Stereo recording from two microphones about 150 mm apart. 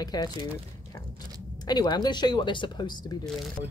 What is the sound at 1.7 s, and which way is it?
Speech, 25° left (ahead or behind).